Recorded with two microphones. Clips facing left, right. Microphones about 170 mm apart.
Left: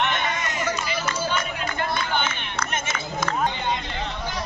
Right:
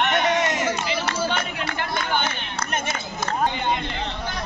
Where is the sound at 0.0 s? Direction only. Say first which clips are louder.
Right 4 dB; 55° right (ahead or behind).